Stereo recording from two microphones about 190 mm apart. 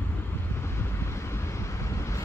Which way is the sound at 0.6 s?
15° left (ahead or behind).